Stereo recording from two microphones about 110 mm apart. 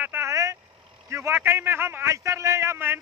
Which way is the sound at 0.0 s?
20° right (ahead or behind).